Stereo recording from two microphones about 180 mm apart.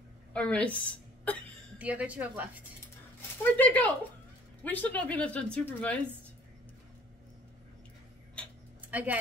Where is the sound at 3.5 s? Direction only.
10° left (ahead or behind).